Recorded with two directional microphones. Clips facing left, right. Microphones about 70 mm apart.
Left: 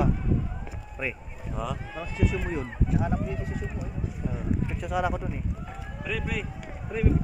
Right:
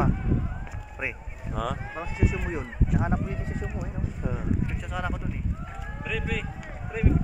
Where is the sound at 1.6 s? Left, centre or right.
Right.